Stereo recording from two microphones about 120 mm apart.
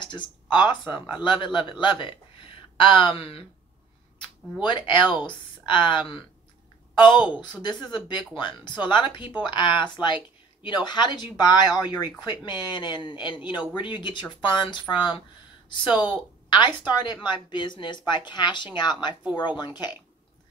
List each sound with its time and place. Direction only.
0.0 s speech: 40° left (ahead or behind)
4.6 s speech: 45° left (ahead or behind)
15.9 s a woman's voice: 15° right (ahead or behind)
16.4 s speech: 40° left (ahead or behind)